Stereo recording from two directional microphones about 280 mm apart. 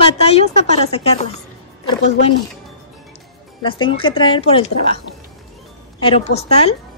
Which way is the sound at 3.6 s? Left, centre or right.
Centre.